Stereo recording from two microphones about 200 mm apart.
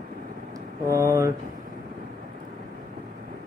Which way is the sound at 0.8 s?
15° right (ahead or behind).